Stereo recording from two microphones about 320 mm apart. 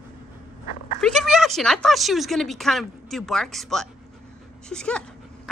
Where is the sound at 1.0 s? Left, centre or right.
Centre.